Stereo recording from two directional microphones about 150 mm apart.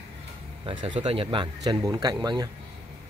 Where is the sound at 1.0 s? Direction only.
40° right (ahead or behind).